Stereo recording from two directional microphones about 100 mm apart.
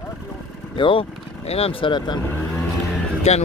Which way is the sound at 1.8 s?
45° left (ahead or behind).